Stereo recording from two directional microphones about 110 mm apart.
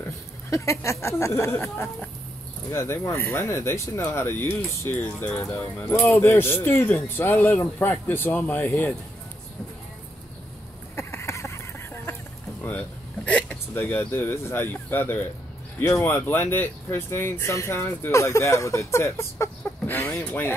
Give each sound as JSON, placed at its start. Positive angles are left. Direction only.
{"t": 0.5, "sound": "speech", "side_deg": 25}
{"t": 11.0, "sound": "a sound", "side_deg": 25}
{"t": 12.6, "sound": "speech", "side_deg": 15}
{"t": 19.6, "sound": "chicken", "side_deg": 20}
{"t": 20.2, "sound": "speech", "side_deg": 15}